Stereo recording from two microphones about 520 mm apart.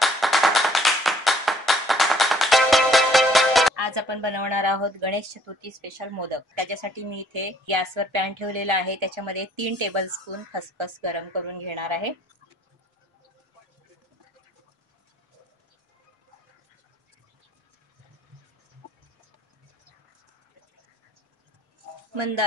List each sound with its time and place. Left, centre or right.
0.0 s clapping: centre
3.7 s a woman's voice: right
22.1 s speech: right